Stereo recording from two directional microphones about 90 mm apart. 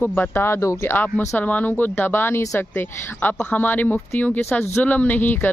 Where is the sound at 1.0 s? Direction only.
20° left (ahead or behind).